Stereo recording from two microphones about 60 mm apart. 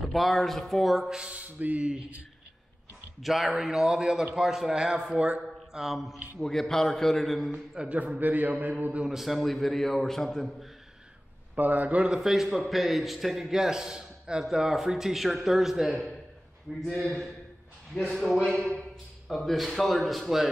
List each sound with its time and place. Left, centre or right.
0.1 s a man's voice: centre
1.1 s speech: right
3.2 s a man's voice: centre
6.4 s a man's voice: centre
7.5 s speech: centre
8.0 s speech: right
9.1 s a man's voice: centre
11.5 s speech: right
12.2 s a man's voice: centre
17.0 s a man's voice: centre
19.2 s a man's voice: centre